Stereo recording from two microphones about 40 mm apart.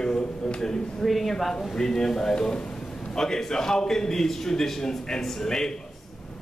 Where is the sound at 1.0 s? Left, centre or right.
Centre.